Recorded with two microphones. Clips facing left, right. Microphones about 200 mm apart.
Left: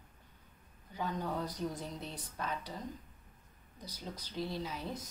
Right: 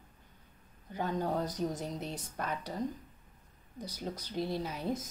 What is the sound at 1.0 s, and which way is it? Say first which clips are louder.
Speech: right 4 dB; 50° right (ahead or behind).